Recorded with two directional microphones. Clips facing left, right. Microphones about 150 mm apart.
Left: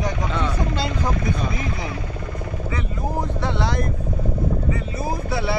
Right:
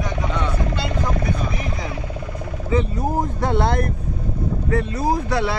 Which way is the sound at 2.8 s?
45° right (ahead or behind).